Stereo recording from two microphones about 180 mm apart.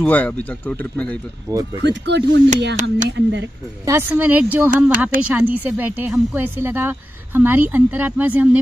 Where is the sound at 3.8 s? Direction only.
10° right (ahead or behind).